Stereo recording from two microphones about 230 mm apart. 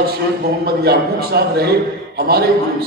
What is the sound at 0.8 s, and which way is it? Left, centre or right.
A man's voice, right.